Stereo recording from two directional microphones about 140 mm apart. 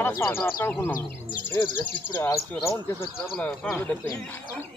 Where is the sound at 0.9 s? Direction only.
75° left (ahead or behind).